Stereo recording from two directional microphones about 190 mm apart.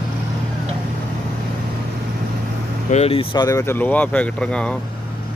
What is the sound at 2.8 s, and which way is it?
Speech, 35° left (ahead or behind).